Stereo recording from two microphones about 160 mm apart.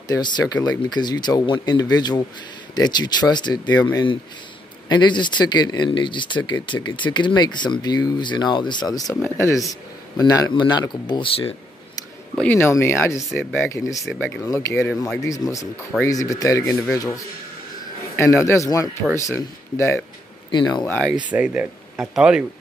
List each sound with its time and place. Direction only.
0.1 s speech: 25° left (ahead or behind)
12.4 s speech: 10° left (ahead or behind)
14.0 s speech: 5° left (ahead or behind)
14.5 s speech: 15° left (ahead or behind)
21.3 s speech: 10° right (ahead or behind)